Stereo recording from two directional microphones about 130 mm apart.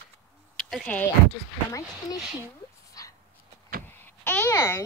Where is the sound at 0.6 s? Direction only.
Centre (ahead or behind).